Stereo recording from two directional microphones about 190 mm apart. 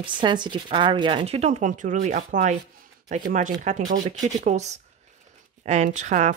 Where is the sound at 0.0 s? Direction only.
25° right (ahead or behind).